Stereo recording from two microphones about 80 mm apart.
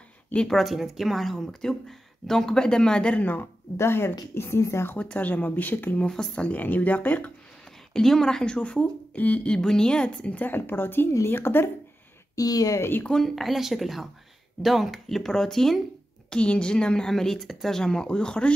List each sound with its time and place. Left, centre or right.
0.3 s speech: centre
0.6 s speech: centre; by 4.9 s left
4.9 s speech: centre
6.0 s speech: centre
7.9 s speech: centre; by 11.7 s left
12.4 s a woman's voice: left
12.7 s speech: left
13.0 s speech: centre